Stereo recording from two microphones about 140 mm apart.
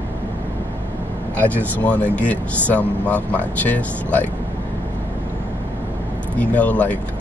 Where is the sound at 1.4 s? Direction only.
10° left (ahead or behind).